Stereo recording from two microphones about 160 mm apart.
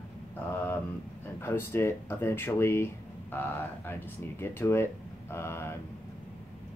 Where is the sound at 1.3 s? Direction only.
15° left (ahead or behind).